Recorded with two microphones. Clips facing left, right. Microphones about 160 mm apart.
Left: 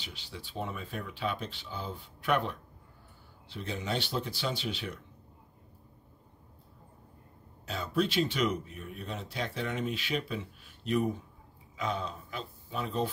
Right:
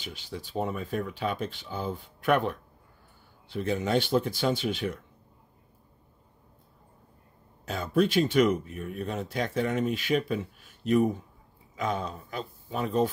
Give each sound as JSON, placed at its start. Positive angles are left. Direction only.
{"t": 0.0, "sound": "speech", "side_deg": -45}
{"t": 7.6, "sound": "speech", "side_deg": -45}